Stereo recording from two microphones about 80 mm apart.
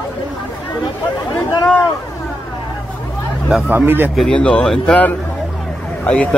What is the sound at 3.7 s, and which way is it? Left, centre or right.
Speech, right.